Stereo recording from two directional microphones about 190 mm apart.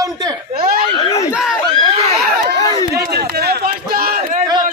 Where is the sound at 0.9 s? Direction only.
30° left (ahead or behind).